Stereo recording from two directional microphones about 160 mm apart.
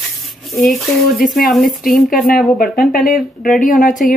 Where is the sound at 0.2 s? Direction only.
Centre (ahead or behind).